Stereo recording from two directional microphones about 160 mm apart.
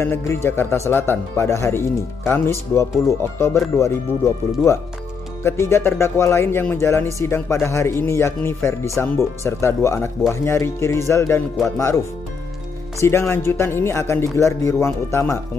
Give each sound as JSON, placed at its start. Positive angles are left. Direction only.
{"t": 0.0, "sound": "speech", "side_deg": 15}
{"t": 5.4, "sound": "speech", "side_deg": 15}
{"t": 13.0, "sound": "speech", "side_deg": 15}